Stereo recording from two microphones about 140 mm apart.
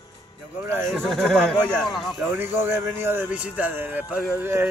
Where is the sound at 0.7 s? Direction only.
20° right (ahead or behind).